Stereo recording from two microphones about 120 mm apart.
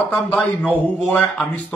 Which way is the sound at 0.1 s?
10° left (ahead or behind).